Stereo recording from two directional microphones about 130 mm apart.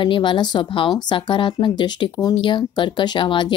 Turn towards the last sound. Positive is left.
turn(degrees=40)  # may be behind; listen again after turning